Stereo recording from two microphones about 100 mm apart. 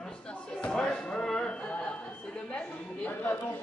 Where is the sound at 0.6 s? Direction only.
10° left (ahead or behind).